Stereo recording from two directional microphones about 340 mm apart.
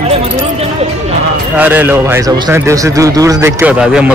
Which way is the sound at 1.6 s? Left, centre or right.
Centre.